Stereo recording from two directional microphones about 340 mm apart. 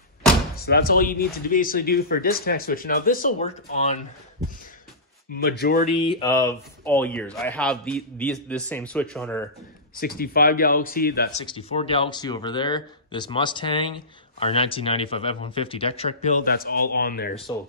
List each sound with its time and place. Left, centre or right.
0.7 s speech: left
5.3 s speech: left
5.9 s speech: centre
9.9 s speech: left
11.4 s speech: centre